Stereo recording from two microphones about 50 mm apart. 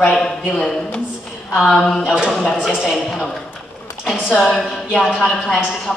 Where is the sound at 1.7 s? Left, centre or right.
Centre.